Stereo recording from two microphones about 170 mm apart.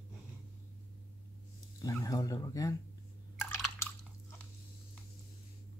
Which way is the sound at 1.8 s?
20° left (ahead or behind).